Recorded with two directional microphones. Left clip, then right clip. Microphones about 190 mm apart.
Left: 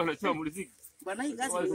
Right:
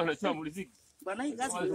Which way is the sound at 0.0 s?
40° right (ahead or behind).